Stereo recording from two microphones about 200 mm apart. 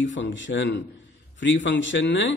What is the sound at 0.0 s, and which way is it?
A man's voice, 65° left (ahead or behind).